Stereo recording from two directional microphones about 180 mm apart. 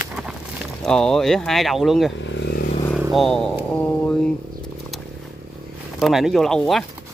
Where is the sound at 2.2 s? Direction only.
80° left.